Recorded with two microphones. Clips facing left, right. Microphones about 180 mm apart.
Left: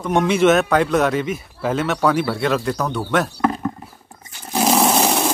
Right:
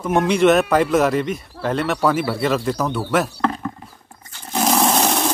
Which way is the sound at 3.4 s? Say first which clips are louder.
Left 2 dB; 10° left (ahead or behind).